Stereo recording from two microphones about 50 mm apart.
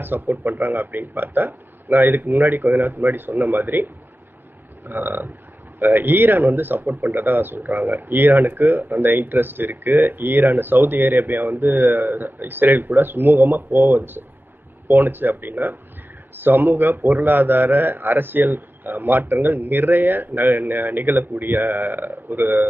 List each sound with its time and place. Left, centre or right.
0.0 s speech: right